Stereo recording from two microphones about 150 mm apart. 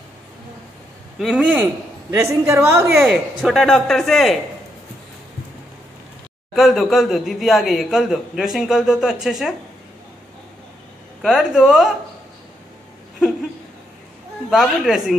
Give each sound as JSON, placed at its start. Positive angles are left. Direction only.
{"t": 1.2, "sound": "a man's voice", "side_deg": -5}
{"t": 3.0, "sound": "speech", "side_deg": 0}
{"t": 6.5, "sound": "speech", "side_deg": 0}
{"t": 11.2, "sound": "speech", "side_deg": -5}
{"t": 14.5, "sound": "speech", "side_deg": 0}